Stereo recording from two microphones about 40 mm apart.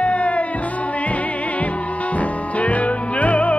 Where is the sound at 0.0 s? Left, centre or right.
Left.